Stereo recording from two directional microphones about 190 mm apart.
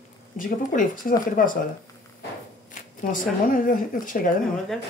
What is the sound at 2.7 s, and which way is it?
Speech, 45° left (ahead or behind).